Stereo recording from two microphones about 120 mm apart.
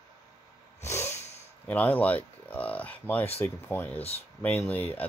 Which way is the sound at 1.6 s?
10° left (ahead or behind).